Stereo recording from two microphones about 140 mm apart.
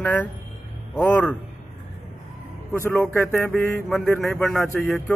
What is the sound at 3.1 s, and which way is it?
Speech, 15° left (ahead or behind).